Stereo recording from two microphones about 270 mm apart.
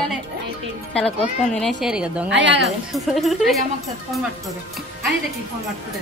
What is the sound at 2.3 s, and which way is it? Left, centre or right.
Speech, right.